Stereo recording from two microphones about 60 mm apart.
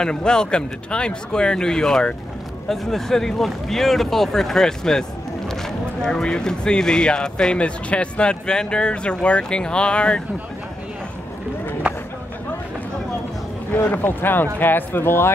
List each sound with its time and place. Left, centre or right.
0.0 s speech: centre
13.7 s speech: left